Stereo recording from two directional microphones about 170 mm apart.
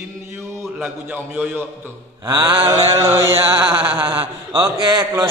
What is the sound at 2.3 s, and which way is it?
A man's voice, 25° right (ahead or behind).